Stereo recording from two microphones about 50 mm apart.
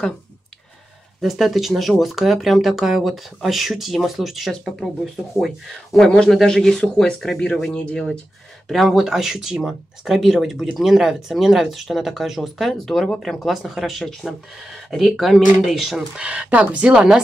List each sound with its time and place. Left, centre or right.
1.2 s speech: centre
5.9 s speech: centre
7.7 s speech: left
8.6 s speech: centre
9.0 s speech: centre
16.2 s speech: right